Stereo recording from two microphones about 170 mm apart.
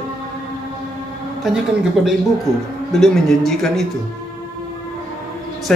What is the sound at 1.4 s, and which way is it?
A man's voice, centre (ahead or behind).